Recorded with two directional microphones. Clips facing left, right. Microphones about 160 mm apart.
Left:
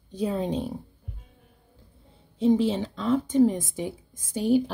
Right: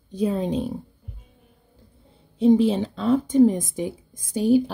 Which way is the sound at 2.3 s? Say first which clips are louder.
Right 4 dB; 15° right (ahead or behind).